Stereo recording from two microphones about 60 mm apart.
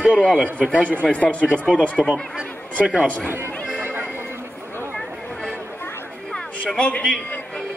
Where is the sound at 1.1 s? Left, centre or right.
Left.